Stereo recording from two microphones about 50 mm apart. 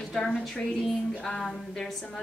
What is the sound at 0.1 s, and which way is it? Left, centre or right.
A woman's voice, centre.